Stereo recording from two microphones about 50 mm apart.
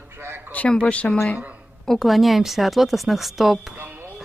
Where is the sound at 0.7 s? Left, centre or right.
Left.